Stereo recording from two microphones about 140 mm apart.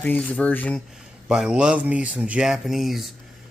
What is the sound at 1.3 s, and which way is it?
Speech, 5° right (ahead or behind).